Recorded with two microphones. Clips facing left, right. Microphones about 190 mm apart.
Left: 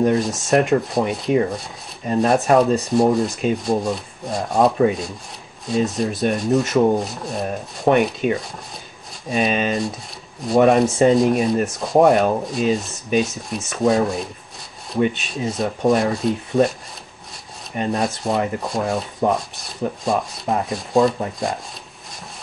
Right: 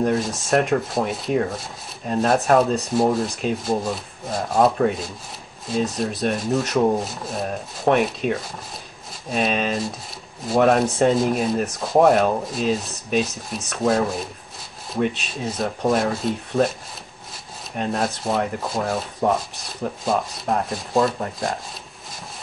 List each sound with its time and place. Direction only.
0.0 s sanding: centre (ahead or behind)
17.7 s sanding: centre (ahead or behind)